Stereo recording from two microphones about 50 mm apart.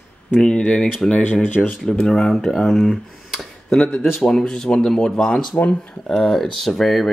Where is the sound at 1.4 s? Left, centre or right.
Left.